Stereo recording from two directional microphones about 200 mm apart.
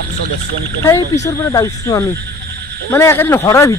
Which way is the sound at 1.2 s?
15° left (ahead or behind).